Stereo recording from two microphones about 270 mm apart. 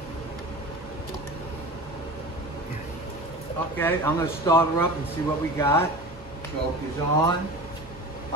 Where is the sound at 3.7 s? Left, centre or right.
Centre.